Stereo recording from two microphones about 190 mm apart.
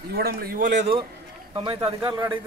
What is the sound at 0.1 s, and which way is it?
Speech, 55° right (ahead or behind).